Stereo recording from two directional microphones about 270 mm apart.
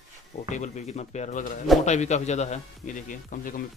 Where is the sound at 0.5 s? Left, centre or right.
Left.